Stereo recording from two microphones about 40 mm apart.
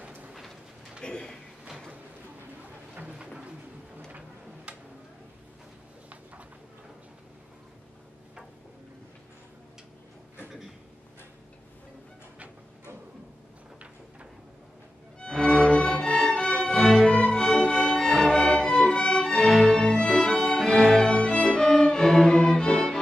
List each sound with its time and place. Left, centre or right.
1.0 s a sound: left
2.9 s a sound: right
4.7 s tick-tock: right
15.1 s music: centre
16.7 s music: centre
17.1 s music: left
19.4 s violin: centre
19.7 s music: left
20.6 s music: centre
21.0 s violin: left